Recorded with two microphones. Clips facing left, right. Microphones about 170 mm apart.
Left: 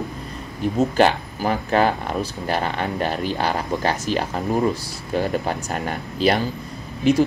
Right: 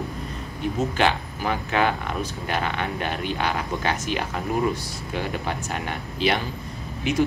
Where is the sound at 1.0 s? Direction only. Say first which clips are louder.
Left 5 dB; 40° left (ahead or behind).